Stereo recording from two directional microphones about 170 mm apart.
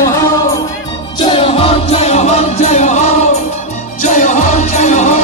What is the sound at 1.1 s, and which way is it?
Music, 30° left (ahead or behind).